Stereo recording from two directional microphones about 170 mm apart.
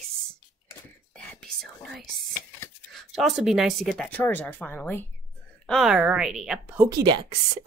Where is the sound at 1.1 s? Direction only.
5° left (ahead or behind).